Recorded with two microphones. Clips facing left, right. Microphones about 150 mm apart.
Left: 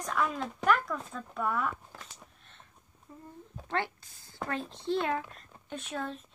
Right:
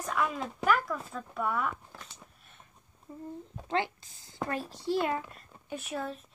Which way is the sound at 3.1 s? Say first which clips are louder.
Right 6 dB; 25° right (ahead or behind).